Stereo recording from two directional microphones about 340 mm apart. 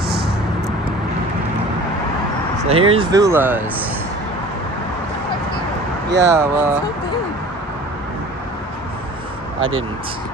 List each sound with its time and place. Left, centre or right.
2.7 s speech: centre
6.2 s speech: centre
9.6 s speech: right